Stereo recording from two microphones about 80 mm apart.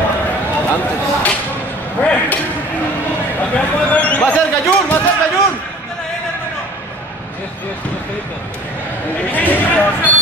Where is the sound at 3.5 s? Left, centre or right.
Centre.